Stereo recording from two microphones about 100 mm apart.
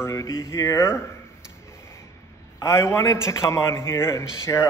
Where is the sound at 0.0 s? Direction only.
30° left (ahead or behind).